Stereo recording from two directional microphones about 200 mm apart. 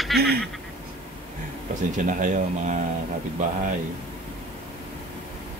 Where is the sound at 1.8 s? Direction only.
40° right (ahead or behind).